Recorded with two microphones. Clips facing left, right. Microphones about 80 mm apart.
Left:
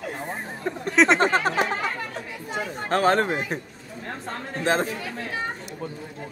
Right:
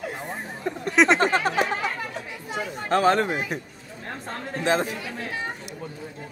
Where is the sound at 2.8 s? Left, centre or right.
Left.